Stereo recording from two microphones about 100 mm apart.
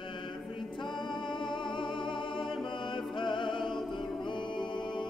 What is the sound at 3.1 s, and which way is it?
Music, 55° left (ahead or behind).